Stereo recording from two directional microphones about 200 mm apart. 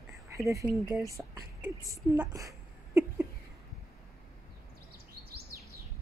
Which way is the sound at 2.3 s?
15° right (ahead or behind).